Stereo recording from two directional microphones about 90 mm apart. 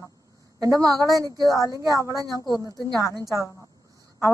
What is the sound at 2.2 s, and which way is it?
A woman's voice, 45° right (ahead or behind).